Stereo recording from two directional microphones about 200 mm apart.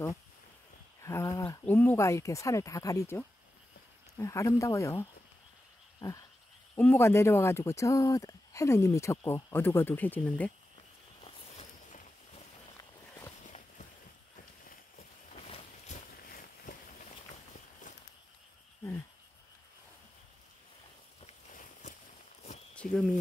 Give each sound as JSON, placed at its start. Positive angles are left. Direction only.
{"t": 1.0, "sound": "speech", "side_deg": 15}
{"t": 5.9, "sound": "frog", "side_deg": 15}
{"t": 6.7, "sound": "speech", "side_deg": 10}
{"t": 15.3, "sound": "boat", "side_deg": 30}
{"t": 16.2, "sound": "a sound", "side_deg": 45}
{"t": 21.3, "sound": "walk", "side_deg": 35}
{"t": 22.8, "sound": "a sound", "side_deg": 0}